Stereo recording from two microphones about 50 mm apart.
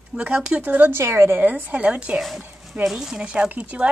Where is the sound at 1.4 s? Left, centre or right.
Right.